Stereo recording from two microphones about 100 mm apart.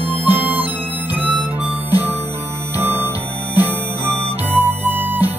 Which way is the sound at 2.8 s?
20° right (ahead or behind).